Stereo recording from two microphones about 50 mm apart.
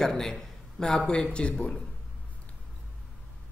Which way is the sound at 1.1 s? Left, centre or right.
Centre.